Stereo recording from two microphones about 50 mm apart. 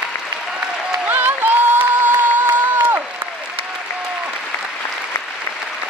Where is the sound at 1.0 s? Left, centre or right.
Right.